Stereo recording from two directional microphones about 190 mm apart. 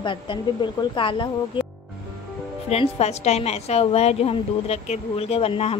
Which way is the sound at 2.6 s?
35° left (ahead or behind).